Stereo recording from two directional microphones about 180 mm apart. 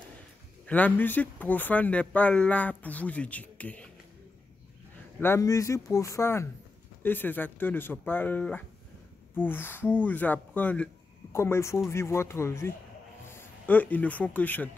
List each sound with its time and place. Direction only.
0.7 s speech: 10° left (ahead or behind)
5.2 s a man's voice: 15° left (ahead or behind)